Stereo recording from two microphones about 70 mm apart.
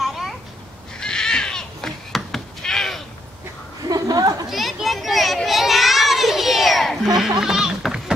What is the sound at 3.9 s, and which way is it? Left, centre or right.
Chatter, right.